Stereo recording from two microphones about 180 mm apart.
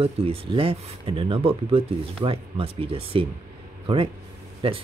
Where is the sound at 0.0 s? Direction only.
30° right (ahead or behind).